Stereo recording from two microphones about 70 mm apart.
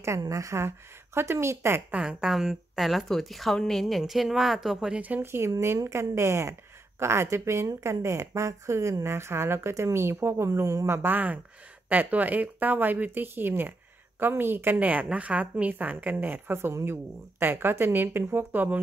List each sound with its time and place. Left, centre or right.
0.2 s speech: right
1.9 s speech: centre
5.2 s a woman's voice: right
10.9 s a woman's voice: right